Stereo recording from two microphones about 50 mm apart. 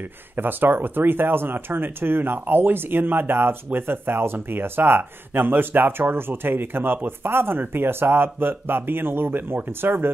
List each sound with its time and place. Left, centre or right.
0.4 s speech: right